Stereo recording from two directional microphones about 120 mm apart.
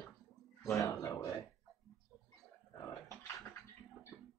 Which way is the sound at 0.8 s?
30° left (ahead or behind).